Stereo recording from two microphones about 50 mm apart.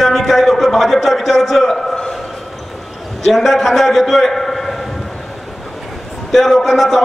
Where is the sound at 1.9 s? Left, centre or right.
Centre.